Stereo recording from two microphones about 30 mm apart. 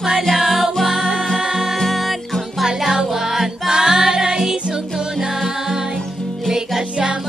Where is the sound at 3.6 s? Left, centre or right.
Right.